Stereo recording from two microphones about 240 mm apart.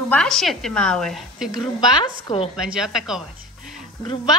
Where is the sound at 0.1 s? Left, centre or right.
Centre.